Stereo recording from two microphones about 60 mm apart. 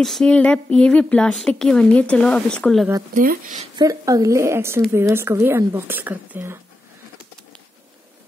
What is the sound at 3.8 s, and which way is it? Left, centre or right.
Speech, right.